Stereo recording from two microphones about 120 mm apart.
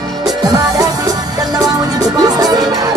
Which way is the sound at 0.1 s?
Centre (ahead or behind).